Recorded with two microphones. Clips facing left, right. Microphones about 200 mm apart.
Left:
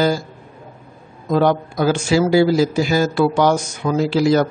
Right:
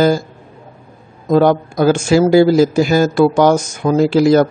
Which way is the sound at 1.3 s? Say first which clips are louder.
Right 4 dB; 45° right (ahead or behind).